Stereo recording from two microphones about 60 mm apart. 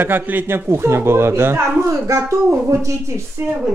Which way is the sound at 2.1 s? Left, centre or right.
Right.